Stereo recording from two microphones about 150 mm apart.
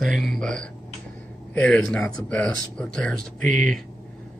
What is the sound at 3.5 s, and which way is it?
Speech, 60° right (ahead or behind).